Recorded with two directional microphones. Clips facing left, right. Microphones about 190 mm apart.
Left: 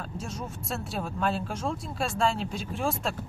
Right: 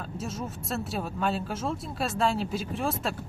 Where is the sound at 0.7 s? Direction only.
Centre (ahead or behind).